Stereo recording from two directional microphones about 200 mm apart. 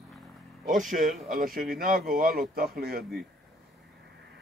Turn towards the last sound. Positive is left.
turn(degrees=-50)  # may be behind; listen again after turning